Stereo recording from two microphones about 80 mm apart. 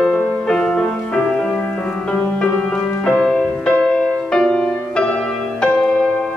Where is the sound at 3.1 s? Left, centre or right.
Centre.